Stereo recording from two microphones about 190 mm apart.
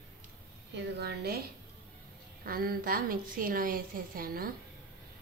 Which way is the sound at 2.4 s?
50° right (ahead or behind).